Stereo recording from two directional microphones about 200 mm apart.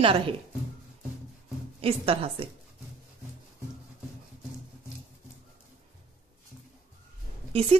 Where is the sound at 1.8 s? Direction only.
30° right (ahead or behind).